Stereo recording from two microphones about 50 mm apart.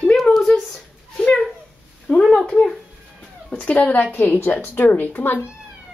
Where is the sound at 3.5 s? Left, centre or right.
Left.